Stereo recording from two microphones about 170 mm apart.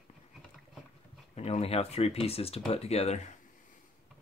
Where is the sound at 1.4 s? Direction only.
40° left (ahead or behind).